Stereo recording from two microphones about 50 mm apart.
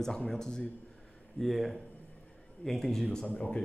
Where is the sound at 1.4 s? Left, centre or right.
Centre.